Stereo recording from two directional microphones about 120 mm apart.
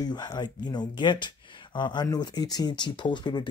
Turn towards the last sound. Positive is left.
turn(degrees=40)  # may be behind; listen again after turning